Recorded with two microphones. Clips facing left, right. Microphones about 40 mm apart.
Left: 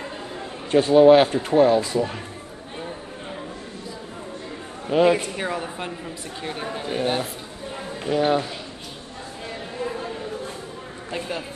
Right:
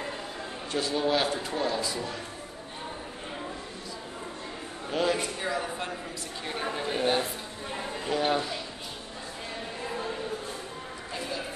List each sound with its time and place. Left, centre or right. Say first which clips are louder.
0.7 s speech: left 15 dB; left
4.8 s speech: left 9 dB; left
6.4 s a woman's voice: left 2 dB; centre
11.1 s a sound: left 6 dB; left